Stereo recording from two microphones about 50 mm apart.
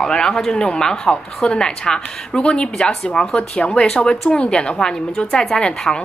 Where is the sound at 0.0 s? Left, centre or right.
Centre.